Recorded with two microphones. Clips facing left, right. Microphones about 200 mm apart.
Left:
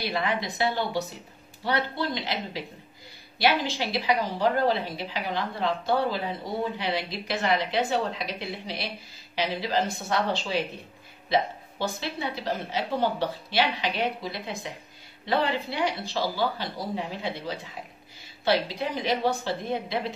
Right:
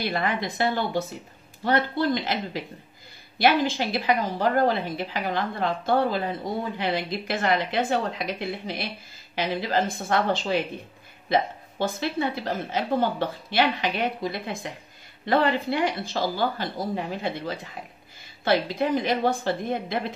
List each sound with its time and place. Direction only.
0.0 s a woman's voice: 50° right (ahead or behind)